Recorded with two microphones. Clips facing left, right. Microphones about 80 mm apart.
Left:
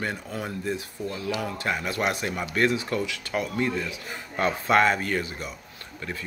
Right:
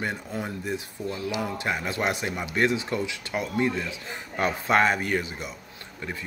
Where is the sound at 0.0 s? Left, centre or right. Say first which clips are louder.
Even; right.